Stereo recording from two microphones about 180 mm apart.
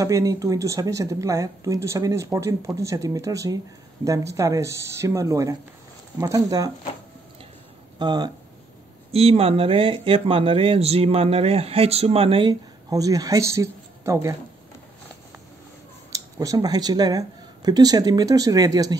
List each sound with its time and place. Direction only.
0.0 s speech: 20° right (ahead or behind)
8.0 s speech: 25° right (ahead or behind)
9.1 s speech: 35° right (ahead or behind); by 14.3 s 15° right (ahead or behind)
16.1 s speech: 20° right (ahead or behind)